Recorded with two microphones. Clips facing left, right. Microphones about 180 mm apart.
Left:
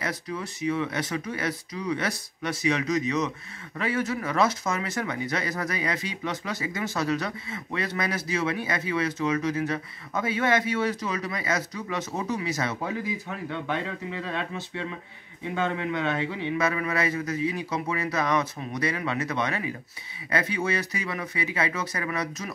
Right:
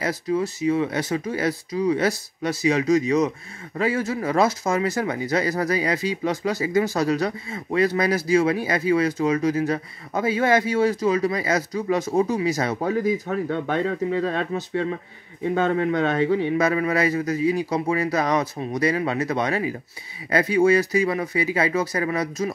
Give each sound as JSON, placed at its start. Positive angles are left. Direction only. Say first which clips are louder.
{"t": 0.0, "sound": "speech", "louder": "right 9 dB", "side_deg": -30}